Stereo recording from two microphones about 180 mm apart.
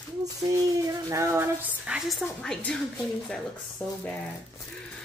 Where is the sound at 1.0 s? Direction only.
15° right (ahead or behind); by 4.2 s 5° left (ahead or behind).